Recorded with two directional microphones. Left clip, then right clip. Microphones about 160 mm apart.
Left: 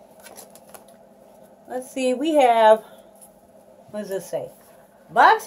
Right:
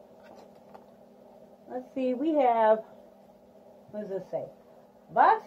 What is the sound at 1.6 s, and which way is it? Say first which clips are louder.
A woman's voice: left 7 dB; 15° left (ahead or behind).